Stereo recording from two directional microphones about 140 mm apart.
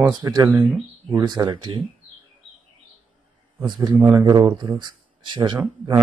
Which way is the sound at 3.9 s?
15° right (ahead or behind).